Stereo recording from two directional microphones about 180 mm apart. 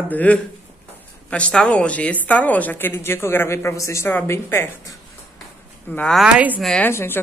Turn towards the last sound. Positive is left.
turn(degrees=10)  # may be behind; listen again after turning